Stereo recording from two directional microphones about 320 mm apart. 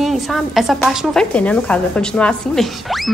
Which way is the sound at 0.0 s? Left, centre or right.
Centre.